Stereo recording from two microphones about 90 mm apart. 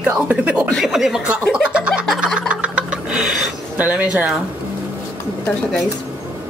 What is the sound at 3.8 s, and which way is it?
Speech, 15° right (ahead or behind).